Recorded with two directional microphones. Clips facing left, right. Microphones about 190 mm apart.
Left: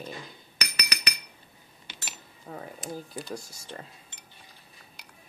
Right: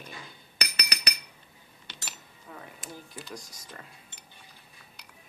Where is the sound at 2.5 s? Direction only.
35° left (ahead or behind).